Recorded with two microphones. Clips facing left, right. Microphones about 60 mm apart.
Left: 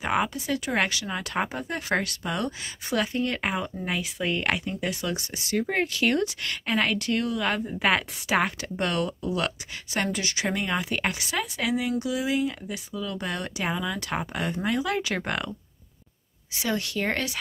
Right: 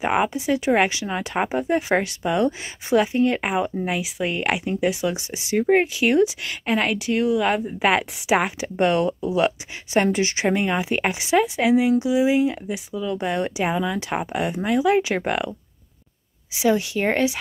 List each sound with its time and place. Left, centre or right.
0.0 s speech: right
16.5 s speech: centre